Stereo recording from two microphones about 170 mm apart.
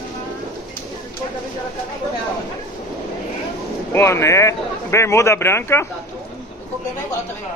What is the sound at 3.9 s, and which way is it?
Speech, 15° left (ahead or behind).